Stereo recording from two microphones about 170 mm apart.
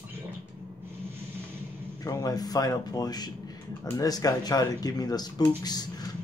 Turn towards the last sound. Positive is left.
turn(degrees=25)  # may be behind; listen again after turning